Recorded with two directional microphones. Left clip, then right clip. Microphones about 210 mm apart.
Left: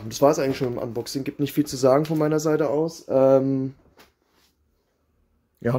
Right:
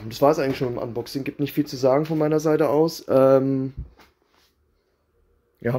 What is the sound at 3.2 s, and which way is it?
Speech, centre (ahead or behind).